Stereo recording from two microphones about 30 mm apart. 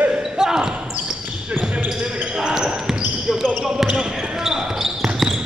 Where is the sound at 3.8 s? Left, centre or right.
Right.